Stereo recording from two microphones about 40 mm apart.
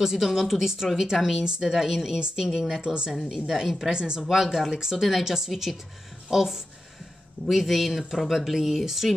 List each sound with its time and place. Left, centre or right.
0.0 s speech: centre
2.1 s a woman's voice: right
2.4 s speech: centre
2.8 s a woman's voice: right
3.1 s speech: centre
3.9 s speech: centre
4.3 s speech: centre
4.7 s speech: centre